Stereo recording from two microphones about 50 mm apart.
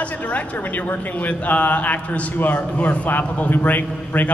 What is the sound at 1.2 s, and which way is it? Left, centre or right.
A man's voice, left.